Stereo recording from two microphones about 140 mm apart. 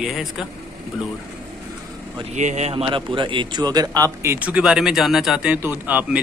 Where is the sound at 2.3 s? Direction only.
55° right (ahead or behind).